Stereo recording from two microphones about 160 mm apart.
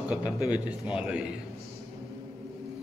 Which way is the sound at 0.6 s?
5° right (ahead or behind).